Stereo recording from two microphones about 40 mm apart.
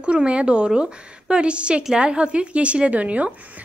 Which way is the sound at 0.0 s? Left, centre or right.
Right.